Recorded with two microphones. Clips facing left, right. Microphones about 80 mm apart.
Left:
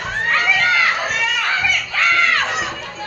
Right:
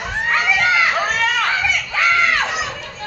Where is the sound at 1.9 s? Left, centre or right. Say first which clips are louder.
Right 1 dB; centre.